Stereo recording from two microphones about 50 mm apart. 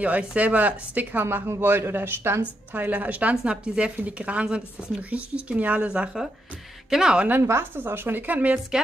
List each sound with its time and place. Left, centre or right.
0.0 s a woman's voice: right
1.2 s a woman's voice: right
2.7 s a woman's voice: right
6.9 s speech: centre
7.4 s a woman's voice: right